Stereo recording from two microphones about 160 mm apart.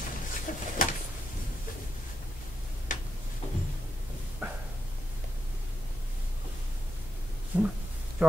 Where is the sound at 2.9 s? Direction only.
55° left (ahead or behind).